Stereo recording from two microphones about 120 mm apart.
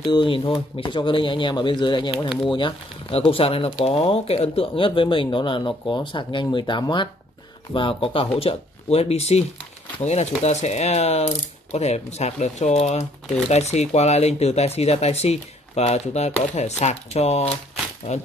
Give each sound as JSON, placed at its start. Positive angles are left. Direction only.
{"t": 0.0, "sound": "speech", "side_deg": 45}